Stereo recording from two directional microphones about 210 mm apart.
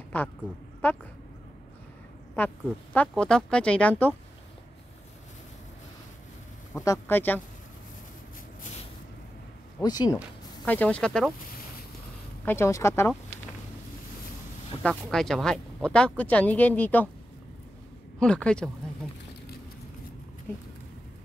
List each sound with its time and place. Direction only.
0.8 s speech: 10° left (ahead or behind)
2.3 s speech: 10° left (ahead or behind)
6.7 s speech: 15° left (ahead or behind)
9.8 s speech: 20° left (ahead or behind)
10.6 s speech: 5° left (ahead or behind)
12.4 s speech: 10° left (ahead or behind)
14.8 s speech: 5° left (ahead or behind)
18.2 s speech: 5° left (ahead or behind)